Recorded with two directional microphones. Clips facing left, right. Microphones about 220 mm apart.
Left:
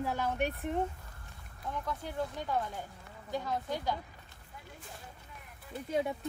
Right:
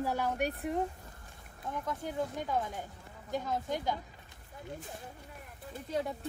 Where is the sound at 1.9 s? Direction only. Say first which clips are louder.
Right 2 dB; 15° right (ahead or behind).